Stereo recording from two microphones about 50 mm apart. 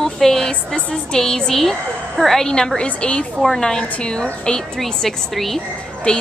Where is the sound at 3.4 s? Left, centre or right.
Centre.